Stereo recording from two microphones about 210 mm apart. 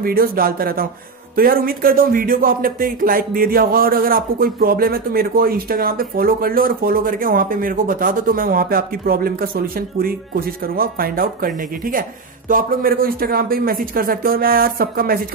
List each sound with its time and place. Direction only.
0.0 s speech: 45° right (ahead or behind)